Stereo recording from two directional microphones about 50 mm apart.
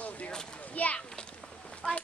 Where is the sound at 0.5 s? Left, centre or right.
Left.